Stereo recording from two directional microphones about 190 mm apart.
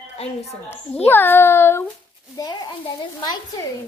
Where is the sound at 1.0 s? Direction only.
10° left (ahead or behind).